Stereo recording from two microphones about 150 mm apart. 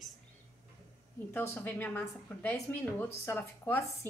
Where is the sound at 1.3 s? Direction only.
10° left (ahead or behind).